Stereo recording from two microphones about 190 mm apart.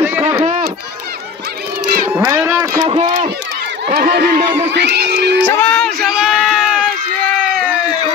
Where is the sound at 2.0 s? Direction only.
15° right (ahead or behind).